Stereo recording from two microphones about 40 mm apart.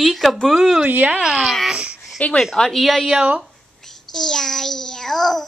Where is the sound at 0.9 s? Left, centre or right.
Right.